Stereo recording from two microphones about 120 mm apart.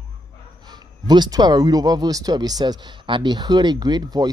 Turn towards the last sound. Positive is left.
turn(degrees=-35)  # may be behind; listen again after turning